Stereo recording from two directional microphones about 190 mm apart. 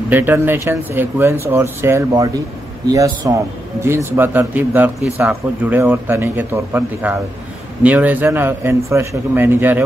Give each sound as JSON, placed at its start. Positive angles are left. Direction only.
{"t": 0.1, "sound": "speech", "side_deg": -10}